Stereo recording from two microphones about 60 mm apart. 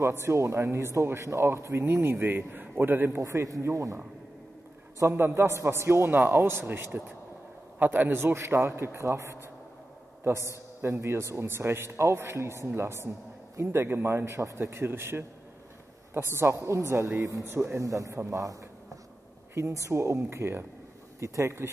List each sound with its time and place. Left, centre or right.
0.0 s a man's voice: right
3.2 s a man's voice: right
5.1 s a man's voice: right
10.8 s a man's voice: right
17.6 s a man's voice: right
19.5 s a man's voice: right
21.2 s a man's voice: right